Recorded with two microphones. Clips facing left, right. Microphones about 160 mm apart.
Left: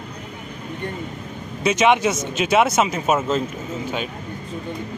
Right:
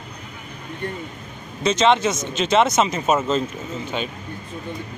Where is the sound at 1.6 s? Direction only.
10° left (ahead or behind).